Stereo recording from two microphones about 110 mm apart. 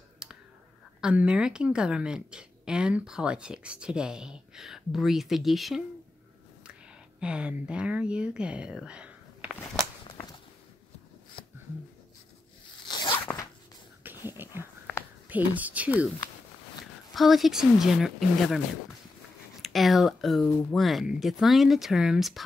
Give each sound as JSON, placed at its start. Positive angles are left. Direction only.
{"t": 0.2, "sound": "clicking", "side_deg": -5}
{"t": 1.0, "sound": "a woman's voice", "side_deg": -10}
{"t": 12.8, "sound": "zipper", "side_deg": 45}
{"t": 13.1, "sound": "zipper", "side_deg": 20}
{"t": 14.0, "sound": "a sound", "side_deg": -20}
{"t": 15.2, "sound": "a woman's voice", "side_deg": -15}
{"t": 17.1, "sound": "speech", "side_deg": 0}
{"t": 19.6, "sound": "speech", "side_deg": 0}